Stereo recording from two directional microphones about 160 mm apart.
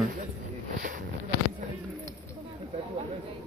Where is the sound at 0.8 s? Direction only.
70° right (ahead or behind).